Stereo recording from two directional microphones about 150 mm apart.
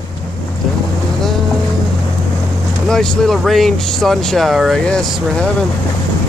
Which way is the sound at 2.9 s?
5° left (ahead or behind).